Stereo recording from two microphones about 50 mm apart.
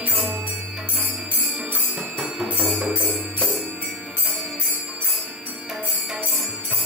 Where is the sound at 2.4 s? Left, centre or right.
Right.